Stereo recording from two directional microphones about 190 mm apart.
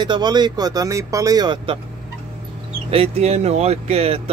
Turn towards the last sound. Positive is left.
turn(degrees=-30)  # may be behind; listen again after turning